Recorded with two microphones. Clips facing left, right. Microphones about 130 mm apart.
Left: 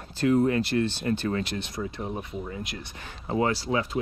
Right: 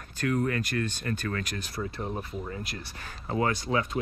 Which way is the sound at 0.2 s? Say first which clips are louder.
Left 6 dB; 25° left (ahead or behind).